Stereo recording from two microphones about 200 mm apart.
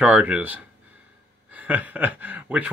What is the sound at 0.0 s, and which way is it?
Speech, 5° right (ahead or behind).